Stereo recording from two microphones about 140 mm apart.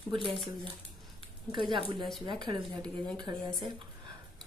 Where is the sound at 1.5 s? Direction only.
35° right (ahead or behind).